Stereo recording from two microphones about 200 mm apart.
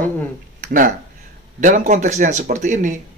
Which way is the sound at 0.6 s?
45° right (ahead or behind).